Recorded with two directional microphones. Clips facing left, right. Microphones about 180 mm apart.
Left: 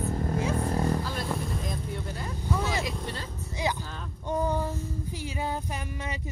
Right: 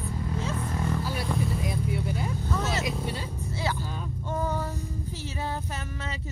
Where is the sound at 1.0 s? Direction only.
10° right (ahead or behind).